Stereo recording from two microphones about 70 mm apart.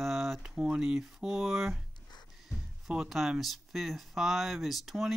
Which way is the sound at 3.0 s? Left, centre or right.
Centre.